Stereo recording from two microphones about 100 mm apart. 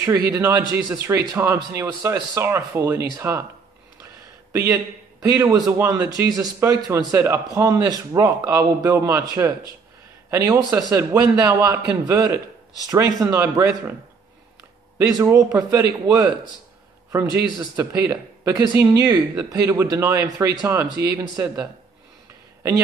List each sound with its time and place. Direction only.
0.0 s speech: 25° right (ahead or behind)
4.0 s a sound: 30° right (ahead or behind)
5.2 s speech: 35° right (ahead or behind)
5.7 s speech: 25° right (ahead or behind)
6.1 s speech: 35° right (ahead or behind)
15.3 s speech: 30° right (ahead or behind)